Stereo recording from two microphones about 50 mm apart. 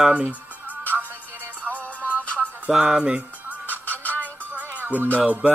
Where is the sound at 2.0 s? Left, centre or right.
Right.